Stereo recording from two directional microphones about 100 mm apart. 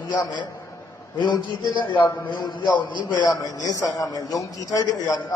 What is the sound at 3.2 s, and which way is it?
A man's voice, 40° left (ahead or behind).